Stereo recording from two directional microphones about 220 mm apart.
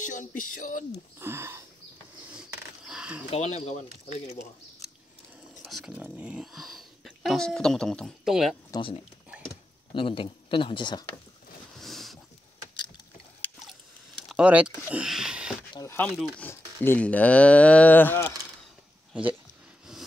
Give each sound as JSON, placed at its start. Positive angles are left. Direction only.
{"t": 0.0, "sound": "speech", "side_deg": 35}
{"t": 1.2, "sound": "speech", "side_deg": -10}
{"t": 2.3, "sound": "a sound", "side_deg": -5}
{"t": 3.3, "sound": "speech", "side_deg": 30}
{"t": 5.6, "sound": "speech", "side_deg": 0}
{"t": 8.7, "sound": "speech", "side_deg": 25}
{"t": 11.8, "sound": "a sound", "side_deg": 0}
{"t": 13.4, "sound": "a sound", "side_deg": 0}
{"t": 15.7, "sound": "speech", "side_deg": 15}
{"t": 16.1, "sound": "speech", "side_deg": 0}